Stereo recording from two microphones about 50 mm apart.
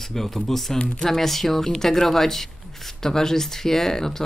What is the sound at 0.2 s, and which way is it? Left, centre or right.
Speech, centre.